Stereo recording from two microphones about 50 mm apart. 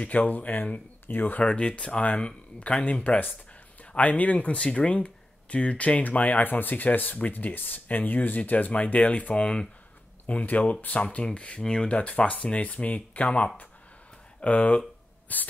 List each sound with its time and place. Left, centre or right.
0.0 s speech: left
1.5 s speech: left
2.8 s speech: left
10.2 s speech: left